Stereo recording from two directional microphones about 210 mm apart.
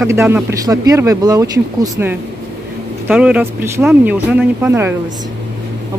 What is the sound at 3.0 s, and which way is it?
Speech, 5° right (ahead or behind).